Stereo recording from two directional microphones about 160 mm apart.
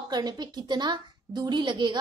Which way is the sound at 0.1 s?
25° right (ahead or behind).